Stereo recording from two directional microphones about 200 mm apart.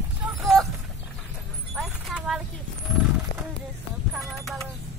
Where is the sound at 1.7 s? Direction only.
5° right (ahead or behind).